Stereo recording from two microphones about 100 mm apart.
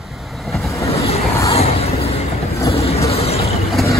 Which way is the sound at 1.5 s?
90° left.